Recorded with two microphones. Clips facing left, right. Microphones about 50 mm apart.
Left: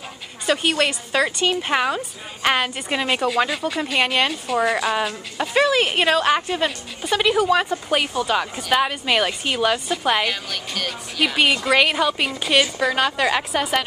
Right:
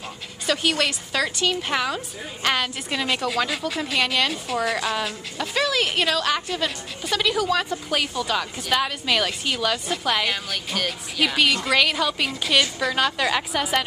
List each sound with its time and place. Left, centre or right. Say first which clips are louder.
0.5 s a woman's voice: left 3 dB; centre
3.4 s speech: left 3 dB; centre
4.0 s a woman's voice: left 3 dB; left
10.2 s speech: left 1 dB; centre
11.3 s a woman's voice: left 3 dB; left